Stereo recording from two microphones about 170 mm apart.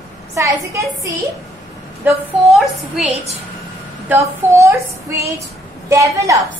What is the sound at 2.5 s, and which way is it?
Speech, centre (ahead or behind).